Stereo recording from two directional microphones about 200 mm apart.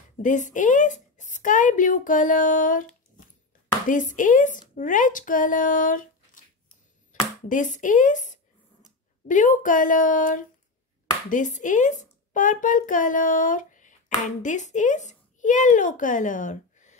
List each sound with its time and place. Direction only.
0.2 s a woman's voice: 40° left (ahead or behind)
7.4 s a woman's voice: 40° left (ahead or behind)